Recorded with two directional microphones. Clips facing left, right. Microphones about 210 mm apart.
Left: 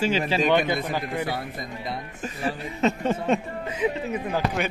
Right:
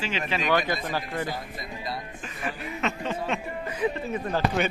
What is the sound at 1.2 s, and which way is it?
Speech, 65° left (ahead or behind).